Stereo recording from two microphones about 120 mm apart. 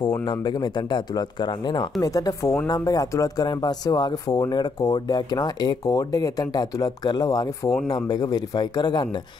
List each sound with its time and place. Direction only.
0.2 s speech: 35° left (ahead or behind)